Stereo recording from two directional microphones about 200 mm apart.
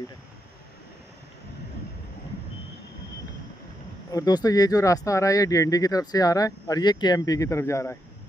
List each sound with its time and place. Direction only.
4.1 s speech: 20° left (ahead or behind)